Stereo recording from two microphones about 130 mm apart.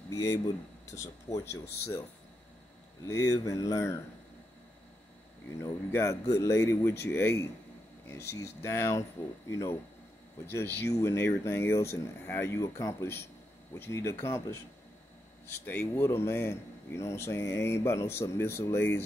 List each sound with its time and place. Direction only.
0.1 s speech: 20° left (ahead or behind)
3.1 s speech: 25° left (ahead or behind)
5.6 s speech: 20° left (ahead or behind)